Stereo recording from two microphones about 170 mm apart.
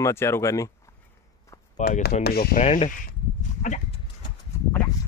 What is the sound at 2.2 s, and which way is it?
Speech, 65° left (ahead or behind).